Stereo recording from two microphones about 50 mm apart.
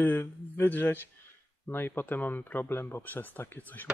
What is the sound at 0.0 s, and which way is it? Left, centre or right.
Speech, left.